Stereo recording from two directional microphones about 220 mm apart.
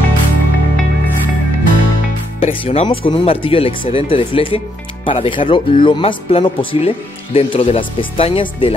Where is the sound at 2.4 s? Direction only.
25° left (ahead or behind).